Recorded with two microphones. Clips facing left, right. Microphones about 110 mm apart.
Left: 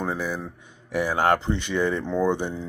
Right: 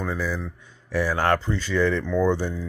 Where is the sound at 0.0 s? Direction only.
20° left (ahead or behind).